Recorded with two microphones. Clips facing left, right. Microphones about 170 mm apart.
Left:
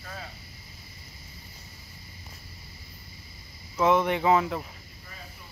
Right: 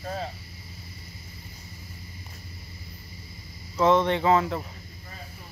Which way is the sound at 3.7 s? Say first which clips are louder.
Right 2 dB; 10° left (ahead or behind).